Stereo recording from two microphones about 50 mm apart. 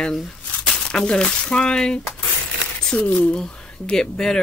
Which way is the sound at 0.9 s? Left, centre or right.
Centre.